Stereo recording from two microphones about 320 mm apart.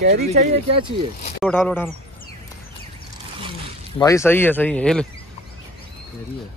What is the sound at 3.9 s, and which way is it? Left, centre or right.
Speech, centre.